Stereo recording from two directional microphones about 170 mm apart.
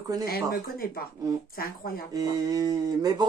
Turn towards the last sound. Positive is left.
turn(degrees=-25)  # may be behind; listen again after turning